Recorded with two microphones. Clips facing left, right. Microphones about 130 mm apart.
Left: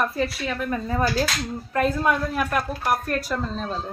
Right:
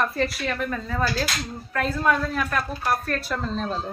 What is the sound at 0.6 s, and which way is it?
A woman's voice, 20° left (ahead or behind).